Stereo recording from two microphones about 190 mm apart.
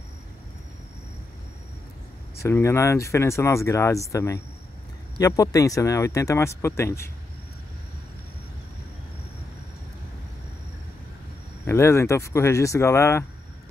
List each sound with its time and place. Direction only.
2.4 s speech: 15° left (ahead or behind)
11.6 s speech: 15° left (ahead or behind)